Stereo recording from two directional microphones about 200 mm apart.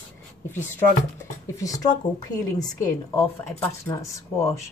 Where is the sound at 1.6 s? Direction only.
15° left (ahead or behind).